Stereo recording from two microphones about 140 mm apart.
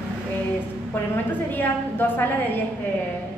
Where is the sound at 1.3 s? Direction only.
15° left (ahead or behind).